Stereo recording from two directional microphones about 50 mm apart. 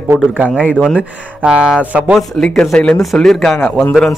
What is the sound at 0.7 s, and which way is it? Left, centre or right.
Speech, left.